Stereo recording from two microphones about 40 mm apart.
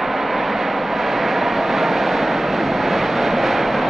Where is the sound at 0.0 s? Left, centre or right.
Centre.